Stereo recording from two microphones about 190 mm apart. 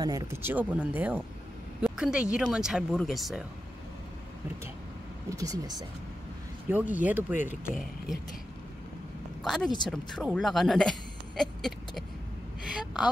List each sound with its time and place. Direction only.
0.0 s speech: 20° right (ahead or behind)
1.8 s a sound: 5° right (ahead or behind)
2.3 s speech: 5° right (ahead or behind)
5.4 s speech: 20° right (ahead or behind)
6.7 s speech: 10° right (ahead or behind)
9.4 s speech: centre (ahead or behind)
12.7 s a woman's voice: 5° right (ahead or behind)